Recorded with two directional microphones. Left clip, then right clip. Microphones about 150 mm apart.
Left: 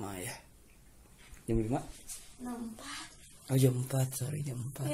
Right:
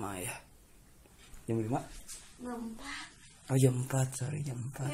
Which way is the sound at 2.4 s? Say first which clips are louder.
Right 1 dB; 30° left (ahead or behind).